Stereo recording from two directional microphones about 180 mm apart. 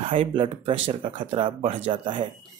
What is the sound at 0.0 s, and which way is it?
Speech, 30° right (ahead or behind).